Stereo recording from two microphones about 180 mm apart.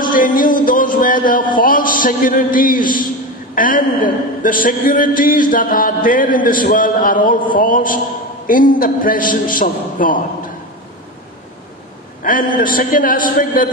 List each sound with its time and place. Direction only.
0.0 s a man's voice: 50° left (ahead or behind)
12.2 s a man's voice: 50° left (ahead or behind)